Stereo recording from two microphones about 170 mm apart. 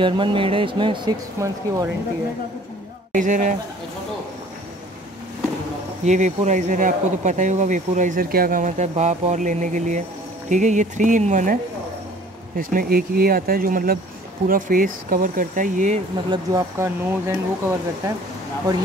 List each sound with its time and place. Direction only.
0.0 s speech: 30° right (ahead or behind)
1.4 s speech: 20° right (ahead or behind)
3.1 s speech: 50° right (ahead or behind)
6.0 s speech: 45° right (ahead or behind)
12.5 s speech: 55° right (ahead or behind)
16.3 s speech: 20° right (ahead or behind)